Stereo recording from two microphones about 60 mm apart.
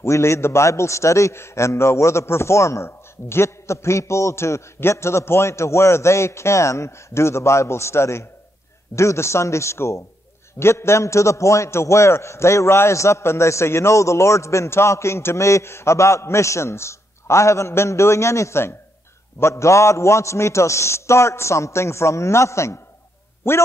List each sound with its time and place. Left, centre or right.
0.0 s a man's voice: left
23.5 s speech: left